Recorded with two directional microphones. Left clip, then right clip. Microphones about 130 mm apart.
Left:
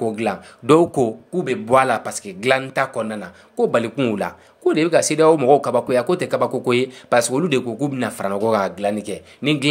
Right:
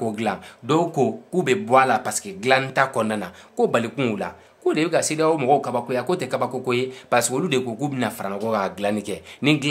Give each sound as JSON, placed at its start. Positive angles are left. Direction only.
{"t": 0.0, "sound": "speech", "side_deg": 5}
{"t": 0.7, "sound": "speech", "side_deg": 40}
{"t": 1.3, "sound": "speech", "side_deg": -15}
{"t": 1.7, "sound": "speech", "side_deg": 25}
{"t": 2.9, "sound": "speech", "side_deg": -10}
{"t": 3.5, "sound": "speech", "side_deg": 0}
{"t": 4.1, "sound": "speech", "side_deg": 15}
{"t": 7.1, "sound": "speech", "side_deg": 10}
{"t": 8.6, "sound": "speech", "side_deg": 0}